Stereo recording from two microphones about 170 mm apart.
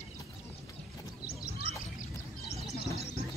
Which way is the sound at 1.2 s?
65° left (ahead or behind).